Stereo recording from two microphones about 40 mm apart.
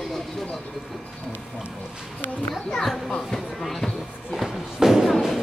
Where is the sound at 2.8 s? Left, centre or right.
Centre.